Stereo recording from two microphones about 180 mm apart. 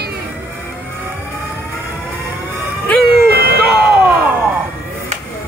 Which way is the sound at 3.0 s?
60° right (ahead or behind).